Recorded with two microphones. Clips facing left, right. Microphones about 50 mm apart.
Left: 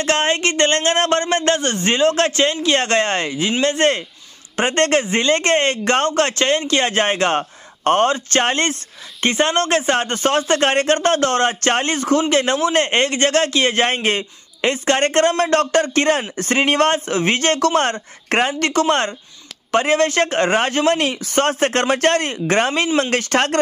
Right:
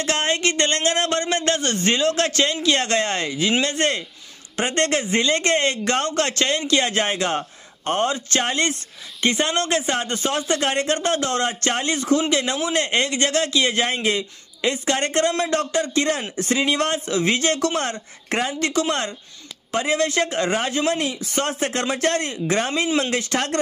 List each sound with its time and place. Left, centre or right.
0.0 s speech: left